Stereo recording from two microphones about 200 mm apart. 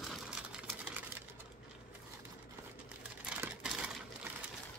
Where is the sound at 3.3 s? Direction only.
5° right (ahead or behind).